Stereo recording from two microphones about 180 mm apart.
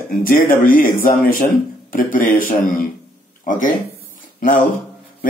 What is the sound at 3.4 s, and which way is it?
Speech, 45° left (ahead or behind).